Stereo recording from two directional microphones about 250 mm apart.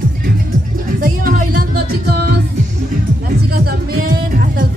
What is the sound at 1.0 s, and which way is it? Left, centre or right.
Music, right.